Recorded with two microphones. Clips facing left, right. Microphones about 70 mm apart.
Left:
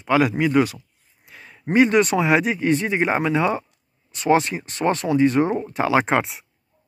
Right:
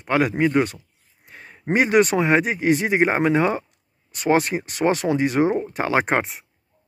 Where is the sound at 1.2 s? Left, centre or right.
Right.